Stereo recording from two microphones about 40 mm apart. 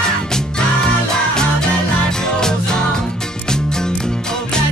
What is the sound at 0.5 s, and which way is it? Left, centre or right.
Music, centre.